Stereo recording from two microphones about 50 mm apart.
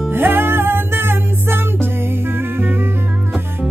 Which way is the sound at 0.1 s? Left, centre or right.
Right.